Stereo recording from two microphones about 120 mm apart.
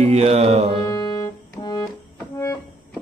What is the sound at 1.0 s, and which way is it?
Organ, 35° left (ahead or behind).